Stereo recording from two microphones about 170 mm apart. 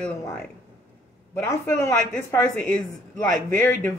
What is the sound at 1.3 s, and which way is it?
Speech, 15° left (ahead or behind).